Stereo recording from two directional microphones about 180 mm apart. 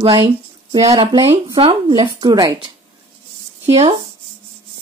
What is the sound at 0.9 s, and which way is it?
Speech, 25° right (ahead or behind).